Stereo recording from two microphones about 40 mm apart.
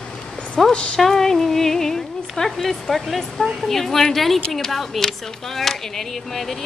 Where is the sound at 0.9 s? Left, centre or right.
Centre.